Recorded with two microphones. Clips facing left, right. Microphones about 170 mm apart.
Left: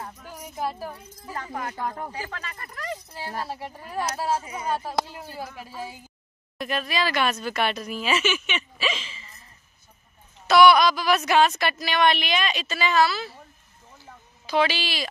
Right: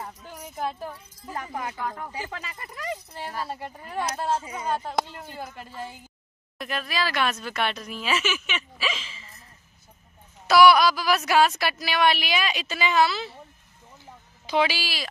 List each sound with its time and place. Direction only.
0.5 s speech: 5° left (ahead or behind)
1.3 s a woman's voice: 15° right (ahead or behind)
10.4 s a woman's voice: 5° right (ahead or behind)
14.0 s a sound: 20° right (ahead or behind)
14.7 s speech: 5° right (ahead or behind)